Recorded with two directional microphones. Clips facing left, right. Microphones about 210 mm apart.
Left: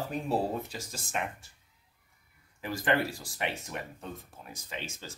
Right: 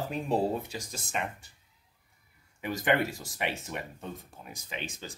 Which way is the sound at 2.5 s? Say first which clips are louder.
Right 1 dB; 20° right (ahead or behind).